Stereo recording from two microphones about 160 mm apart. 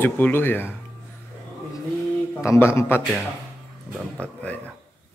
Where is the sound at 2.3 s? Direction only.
15° left (ahead or behind).